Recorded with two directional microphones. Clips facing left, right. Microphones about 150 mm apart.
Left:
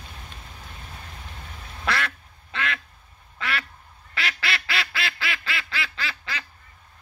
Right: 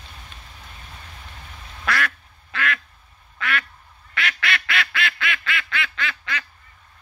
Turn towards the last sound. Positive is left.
turn(degrees=30)  # may be behind; listen again after turning